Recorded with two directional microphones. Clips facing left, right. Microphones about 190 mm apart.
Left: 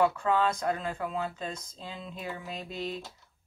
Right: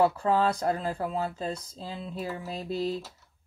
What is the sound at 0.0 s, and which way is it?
Speech, 35° right (ahead or behind).